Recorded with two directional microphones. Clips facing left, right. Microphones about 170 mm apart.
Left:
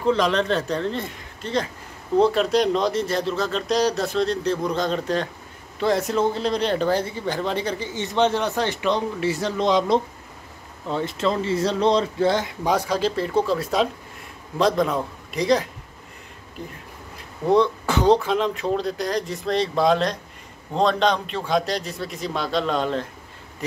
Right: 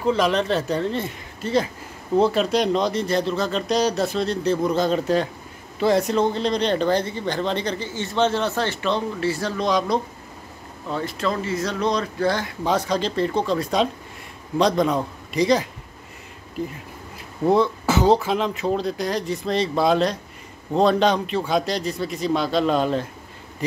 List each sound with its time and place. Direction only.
0.0 s speech: 5° right (ahead or behind)
17.5 s speech: 5° right (ahead or behind)